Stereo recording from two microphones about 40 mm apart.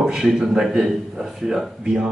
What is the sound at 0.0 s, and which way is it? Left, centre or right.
Speech, centre.